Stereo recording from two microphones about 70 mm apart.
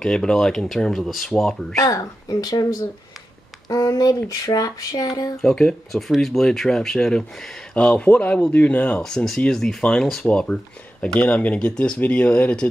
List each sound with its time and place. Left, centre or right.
0.0 s speech: centre
1.8 s speech: left
3.6 s speech: left
5.4 s speech: centre
9.0 s speech: centre